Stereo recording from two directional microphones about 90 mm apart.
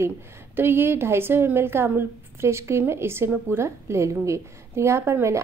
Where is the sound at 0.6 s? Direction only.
25° right (ahead or behind).